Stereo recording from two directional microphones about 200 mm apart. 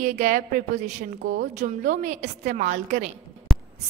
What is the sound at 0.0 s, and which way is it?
Speech, 40° right (ahead or behind).